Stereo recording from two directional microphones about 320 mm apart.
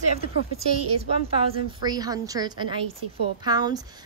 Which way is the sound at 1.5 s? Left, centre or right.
Centre.